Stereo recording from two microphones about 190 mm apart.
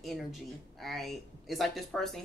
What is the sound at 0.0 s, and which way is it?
Speech, centre (ahead or behind).